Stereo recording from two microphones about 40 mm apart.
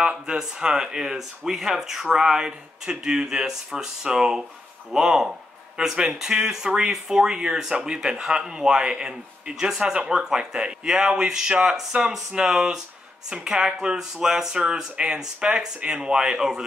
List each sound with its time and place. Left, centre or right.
0.0 s speech: right
11.9 s speech: right
12.4 s speech: centre